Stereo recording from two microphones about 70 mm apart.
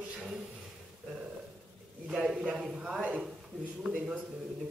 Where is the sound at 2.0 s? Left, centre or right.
Centre.